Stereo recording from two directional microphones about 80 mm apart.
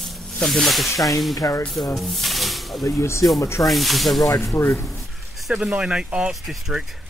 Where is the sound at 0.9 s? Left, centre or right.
Left.